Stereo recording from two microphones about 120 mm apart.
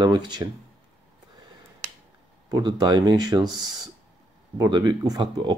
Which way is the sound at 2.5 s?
35° right (ahead or behind).